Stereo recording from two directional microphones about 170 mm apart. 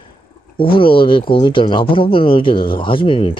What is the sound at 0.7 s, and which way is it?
Speech, 30° left (ahead or behind).